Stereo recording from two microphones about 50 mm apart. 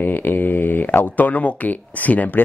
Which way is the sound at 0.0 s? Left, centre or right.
Left.